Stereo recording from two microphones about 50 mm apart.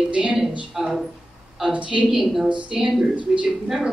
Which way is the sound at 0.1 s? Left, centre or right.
Right.